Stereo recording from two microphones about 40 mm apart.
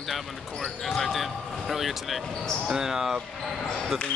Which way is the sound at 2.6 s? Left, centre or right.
Centre.